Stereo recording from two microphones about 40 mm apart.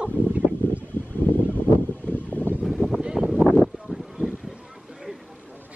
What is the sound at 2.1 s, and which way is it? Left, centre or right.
Boat, left.